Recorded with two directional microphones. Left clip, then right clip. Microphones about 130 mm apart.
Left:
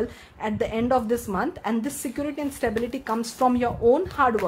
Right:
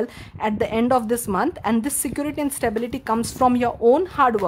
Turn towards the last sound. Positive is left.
turn(degrees=-35)  # may be behind; listen again after turning